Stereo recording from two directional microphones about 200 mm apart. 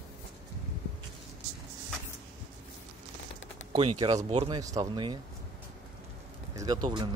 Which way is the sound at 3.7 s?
25° right (ahead or behind).